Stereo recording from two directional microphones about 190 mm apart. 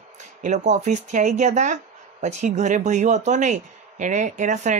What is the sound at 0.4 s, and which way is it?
Speech, 40° right (ahead or behind).